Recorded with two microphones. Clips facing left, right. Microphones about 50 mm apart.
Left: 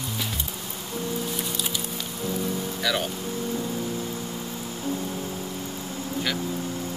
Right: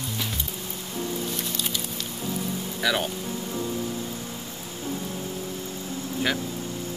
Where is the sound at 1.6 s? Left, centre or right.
Centre.